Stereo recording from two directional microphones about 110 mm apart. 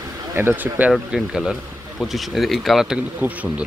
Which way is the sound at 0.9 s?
5° right (ahead or behind).